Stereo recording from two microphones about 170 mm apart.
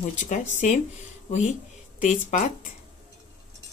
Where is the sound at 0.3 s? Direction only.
45° left (ahead or behind).